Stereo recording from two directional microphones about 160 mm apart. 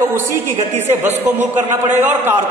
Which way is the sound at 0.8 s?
15° right (ahead or behind).